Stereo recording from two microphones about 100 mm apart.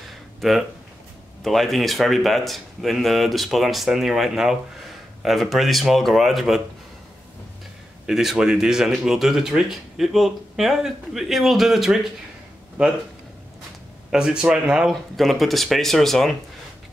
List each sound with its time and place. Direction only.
0.4 s speech: centre (ahead or behind)
8.1 s speech: 5° right (ahead or behind)
12.8 s speech: 15° right (ahead or behind)
14.1 s speech: 5° right (ahead or behind)